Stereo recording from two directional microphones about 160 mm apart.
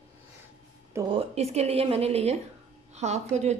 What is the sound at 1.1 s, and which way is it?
Speech, 40° right (ahead or behind).